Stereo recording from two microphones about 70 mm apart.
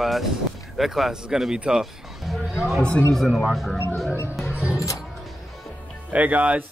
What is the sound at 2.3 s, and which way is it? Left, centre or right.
Speech, centre.